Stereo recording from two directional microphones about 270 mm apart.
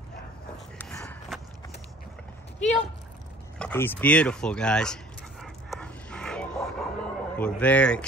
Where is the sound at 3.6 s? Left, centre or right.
Centre.